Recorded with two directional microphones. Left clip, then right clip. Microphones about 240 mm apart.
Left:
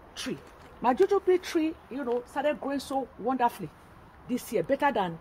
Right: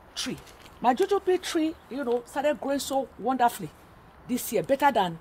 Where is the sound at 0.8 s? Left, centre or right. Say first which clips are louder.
Even; right.